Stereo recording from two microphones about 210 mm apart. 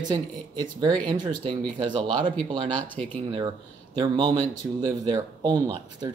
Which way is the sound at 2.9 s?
10° left (ahead or behind).